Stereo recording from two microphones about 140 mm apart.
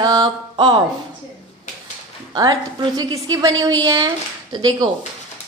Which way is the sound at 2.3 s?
25° right (ahead or behind).